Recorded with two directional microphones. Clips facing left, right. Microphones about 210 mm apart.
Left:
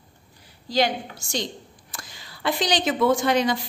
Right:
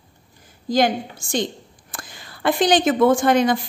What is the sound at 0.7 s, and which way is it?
A woman's voice, 50° right (ahead or behind).